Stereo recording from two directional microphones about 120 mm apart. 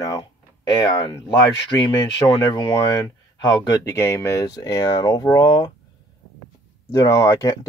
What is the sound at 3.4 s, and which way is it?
Speech, 30° left (ahead or behind).